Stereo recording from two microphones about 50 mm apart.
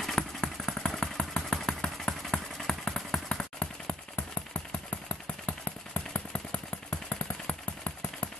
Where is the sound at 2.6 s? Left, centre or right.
Centre.